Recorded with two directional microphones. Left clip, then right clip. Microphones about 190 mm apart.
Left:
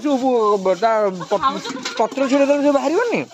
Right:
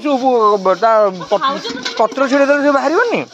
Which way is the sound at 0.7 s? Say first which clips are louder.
Right 5 dB; 20° left (ahead or behind).